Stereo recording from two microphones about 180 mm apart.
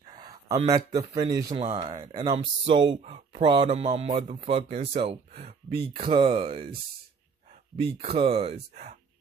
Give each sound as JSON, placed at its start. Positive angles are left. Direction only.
{"t": 0.0, "sound": "speech", "side_deg": -25}
{"t": 1.6, "sound": "speech", "side_deg": -35}
{"t": 7.7, "sound": "speech", "side_deg": -30}